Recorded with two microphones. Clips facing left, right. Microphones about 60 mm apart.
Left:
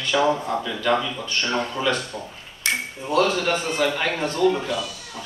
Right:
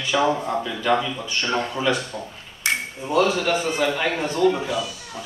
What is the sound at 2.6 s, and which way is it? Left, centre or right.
Ping, right.